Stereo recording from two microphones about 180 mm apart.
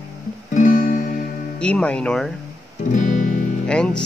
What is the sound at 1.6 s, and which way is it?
Speech, 5° left (ahead or behind).